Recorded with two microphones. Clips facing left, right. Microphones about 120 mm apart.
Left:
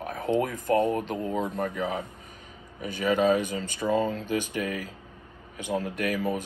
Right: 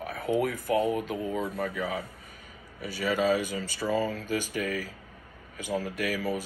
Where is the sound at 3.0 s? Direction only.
50° left (ahead or behind).